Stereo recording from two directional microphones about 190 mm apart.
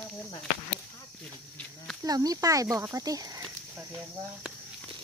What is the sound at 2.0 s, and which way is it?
Speech, 20° right (ahead or behind).